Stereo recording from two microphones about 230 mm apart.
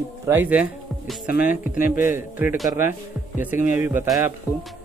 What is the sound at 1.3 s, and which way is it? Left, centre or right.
Speech, left.